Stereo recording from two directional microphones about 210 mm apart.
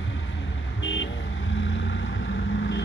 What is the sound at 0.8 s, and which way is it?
Vehicle, 60° left (ahead or behind).